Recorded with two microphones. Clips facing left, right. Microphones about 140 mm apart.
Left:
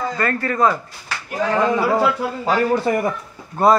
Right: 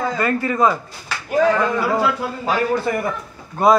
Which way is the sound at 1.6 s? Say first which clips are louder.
Left 2 dB; 30° left (ahead or behind).